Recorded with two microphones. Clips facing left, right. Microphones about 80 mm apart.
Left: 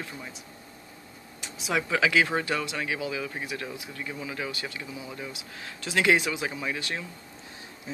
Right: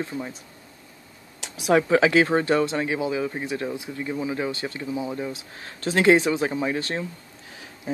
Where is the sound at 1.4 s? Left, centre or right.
Right.